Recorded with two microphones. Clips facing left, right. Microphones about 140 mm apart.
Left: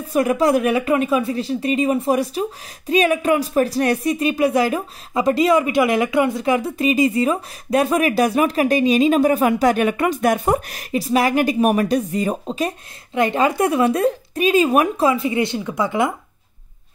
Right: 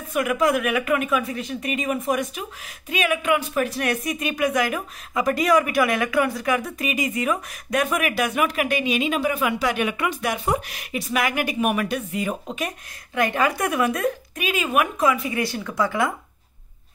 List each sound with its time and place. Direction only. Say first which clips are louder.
0.1 s speech: left 5 dB; 35° left (ahead or behind)